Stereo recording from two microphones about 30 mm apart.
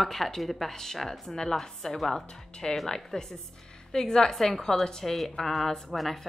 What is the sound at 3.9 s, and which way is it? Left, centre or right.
Speech, left.